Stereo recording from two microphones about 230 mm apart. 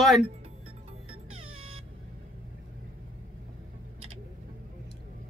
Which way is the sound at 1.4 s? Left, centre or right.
Right.